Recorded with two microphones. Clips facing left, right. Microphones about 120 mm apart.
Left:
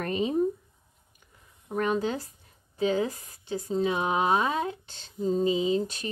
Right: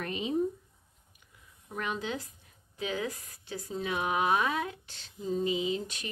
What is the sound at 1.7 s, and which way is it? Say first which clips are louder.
Speech: left 8 dB; 40° left (ahead or behind).